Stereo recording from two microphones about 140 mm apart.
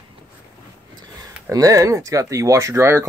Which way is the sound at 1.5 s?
25° right (ahead or behind).